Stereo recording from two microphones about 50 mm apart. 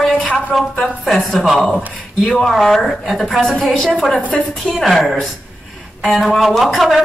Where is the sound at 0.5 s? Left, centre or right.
Centre.